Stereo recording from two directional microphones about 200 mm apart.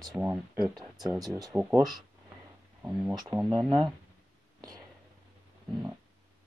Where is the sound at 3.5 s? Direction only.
25° right (ahead or behind).